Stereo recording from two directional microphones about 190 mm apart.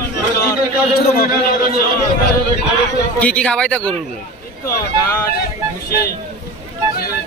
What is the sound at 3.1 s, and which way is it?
Speech, 5° left (ahead or behind).